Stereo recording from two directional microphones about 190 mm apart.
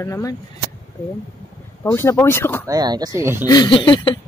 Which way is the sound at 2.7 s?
20° right (ahead or behind).